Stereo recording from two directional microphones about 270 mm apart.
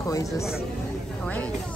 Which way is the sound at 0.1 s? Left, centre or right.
Centre.